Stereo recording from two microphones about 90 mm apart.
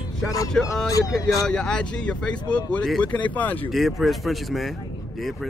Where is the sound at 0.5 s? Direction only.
5° left (ahead or behind).